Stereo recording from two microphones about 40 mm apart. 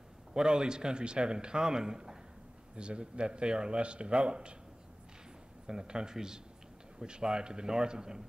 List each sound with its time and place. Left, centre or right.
0.3 s a man's voice: centre
5.7 s a man's voice: centre